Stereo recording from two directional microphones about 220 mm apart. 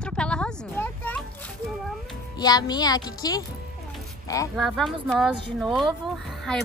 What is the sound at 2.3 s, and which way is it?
A woman's voice, 20° left (ahead or behind).